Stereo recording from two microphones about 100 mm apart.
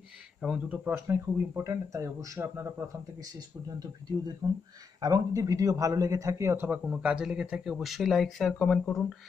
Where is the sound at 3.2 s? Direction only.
40° right (ahead or behind).